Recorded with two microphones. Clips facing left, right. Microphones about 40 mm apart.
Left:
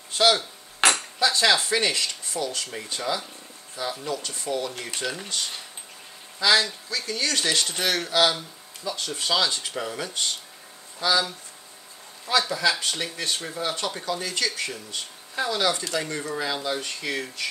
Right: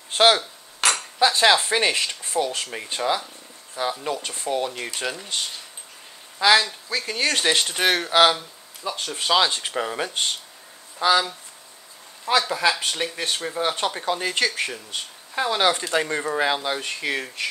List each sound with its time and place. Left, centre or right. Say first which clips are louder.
0.1 s a sound: right 3 dB; right
1.2 s speech: right 4 dB; right
6.4 s speech: right 3 dB; right